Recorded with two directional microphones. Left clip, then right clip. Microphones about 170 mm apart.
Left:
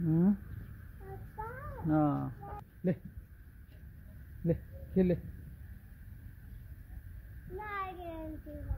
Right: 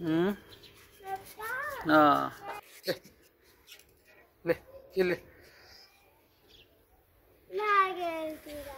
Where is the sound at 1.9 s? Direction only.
10° right (ahead or behind).